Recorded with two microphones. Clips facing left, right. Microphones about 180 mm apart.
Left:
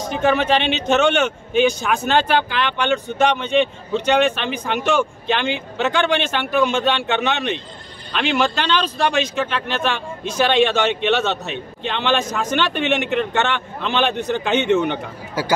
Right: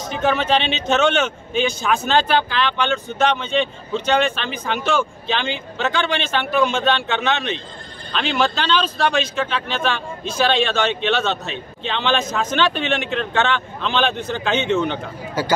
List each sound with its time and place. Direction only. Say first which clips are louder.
0.1 s speech: left 1 dB; 15° left (ahead or behind)
8.2 s speech: left 1 dB; 15° left (ahead or behind)
11.4 s a man's voice: left 2 dB; 60° left (ahead or behind)
11.9 s speech: even; 10° left (ahead or behind)